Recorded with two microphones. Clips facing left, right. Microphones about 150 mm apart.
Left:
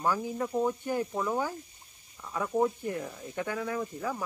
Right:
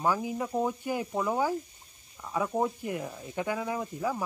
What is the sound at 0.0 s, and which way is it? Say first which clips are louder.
Speech: right 1 dB; 10° right (ahead or behind).